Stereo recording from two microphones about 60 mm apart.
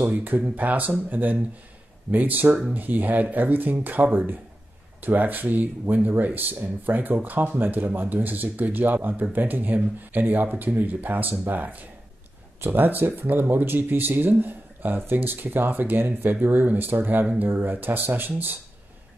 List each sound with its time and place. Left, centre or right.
0.1 s speech: right